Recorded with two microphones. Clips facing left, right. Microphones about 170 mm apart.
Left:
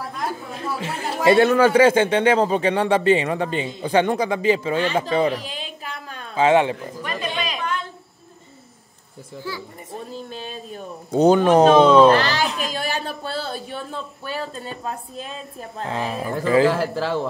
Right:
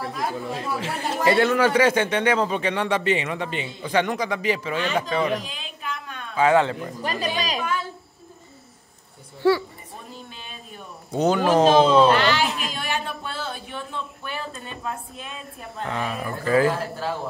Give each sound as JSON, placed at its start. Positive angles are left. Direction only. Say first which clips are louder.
{"t": 1.3, "sound": "speech", "louder": "left 5 dB", "side_deg": 35}
{"t": 7.0, "sound": "speech", "louder": "right 4 dB", "side_deg": -35}
{"t": 9.4, "sound": "a woman's voice", "louder": "right 14 dB", "side_deg": -70}
{"t": 10.3, "sound": "speech", "louder": "left 8 dB", "side_deg": 40}
{"t": 15.8, "sound": "speech", "louder": "left 2 dB", "side_deg": 25}
{"t": 16.6, "sound": "speech", "louder": "left 4 dB", "side_deg": 90}